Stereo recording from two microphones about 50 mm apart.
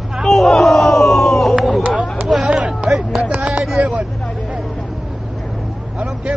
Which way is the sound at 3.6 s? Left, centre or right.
Centre.